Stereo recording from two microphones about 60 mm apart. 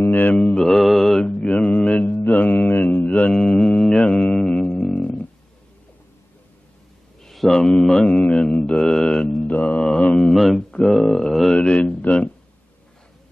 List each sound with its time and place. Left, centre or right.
0.0 s mantra: left
0.4 s mantra: centre
1.2 s mantra: left
3.3 s mantra: centre
4.7 s a sound: centre
5.0 s a sound: left
7.2 s mantra: centre
9.5 s mantra: left
10.1 s mantra: centre
11.5 s mantra: centre